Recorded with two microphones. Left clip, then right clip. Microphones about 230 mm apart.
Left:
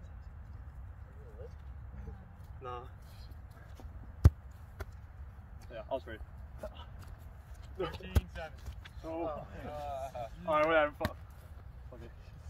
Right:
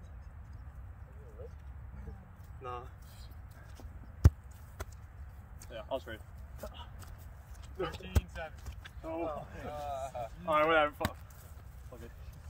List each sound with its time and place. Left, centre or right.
2.6 s speech: centre
4.2 s basketball bounce: centre
4.8 s a sound: right
7.7 s speech: centre